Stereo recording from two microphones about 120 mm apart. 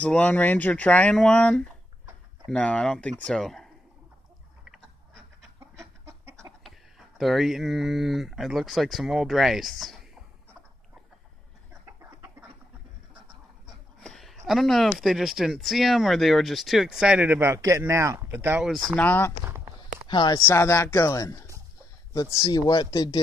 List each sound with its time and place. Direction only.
0.0 s speech: 10° left (ahead or behind)
4.6 s a sound: centre (ahead or behind)
5.6 s chicken: 25° right (ahead or behind)
7.2 s speech: centre (ahead or behind)
13.9 s a sound: centre (ahead or behind)
14.4 s speech: centre (ahead or behind); by 18.6 s 15° right (ahead or behind)
18.9 s speech: 15° left (ahead or behind)
20.1 s speech: 40° left (ahead or behind)
20.4 s speech: 25° left (ahead or behind)